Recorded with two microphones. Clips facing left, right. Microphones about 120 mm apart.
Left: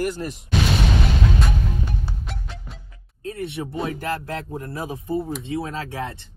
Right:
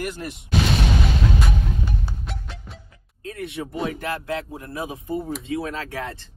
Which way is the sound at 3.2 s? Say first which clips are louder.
Left 2 dB; 30° left (ahead or behind).